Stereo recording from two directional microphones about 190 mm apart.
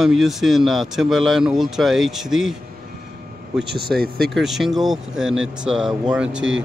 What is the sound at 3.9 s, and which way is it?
Speech, 55° right (ahead or behind).